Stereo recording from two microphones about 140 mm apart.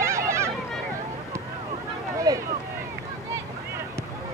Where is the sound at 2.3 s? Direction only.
25° right (ahead or behind).